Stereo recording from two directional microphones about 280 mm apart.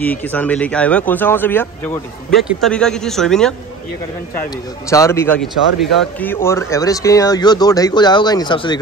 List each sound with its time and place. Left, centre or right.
0.0 s a man's voice: centre
4.8 s speech: centre